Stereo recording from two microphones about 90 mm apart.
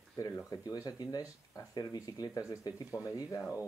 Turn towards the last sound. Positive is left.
turn(degrees=40)  # may be behind; listen again after turning